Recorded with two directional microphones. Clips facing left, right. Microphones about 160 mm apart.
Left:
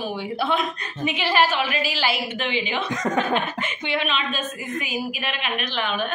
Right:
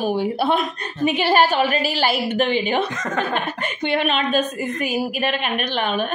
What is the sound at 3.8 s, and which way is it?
A woman's voice, 50° right (ahead or behind).